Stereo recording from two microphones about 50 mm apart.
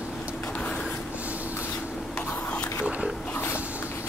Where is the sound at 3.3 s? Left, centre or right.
Left.